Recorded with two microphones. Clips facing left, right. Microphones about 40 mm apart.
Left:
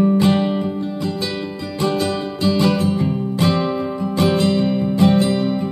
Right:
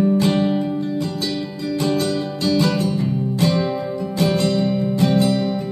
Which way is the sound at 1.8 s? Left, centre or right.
Left.